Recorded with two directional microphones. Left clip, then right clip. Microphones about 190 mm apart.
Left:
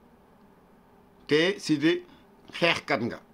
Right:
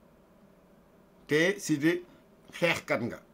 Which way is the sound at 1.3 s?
15° right (ahead or behind).